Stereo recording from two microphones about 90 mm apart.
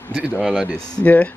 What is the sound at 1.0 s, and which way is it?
Speech, 20° left (ahead or behind).